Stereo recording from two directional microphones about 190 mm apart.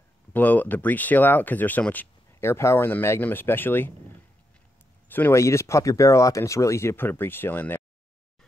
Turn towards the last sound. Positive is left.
turn(degrees=10)  # may be behind; listen again after turning